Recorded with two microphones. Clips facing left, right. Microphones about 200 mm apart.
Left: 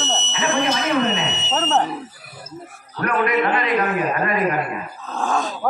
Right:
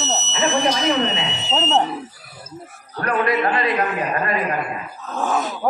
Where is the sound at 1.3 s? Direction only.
5° left (ahead or behind).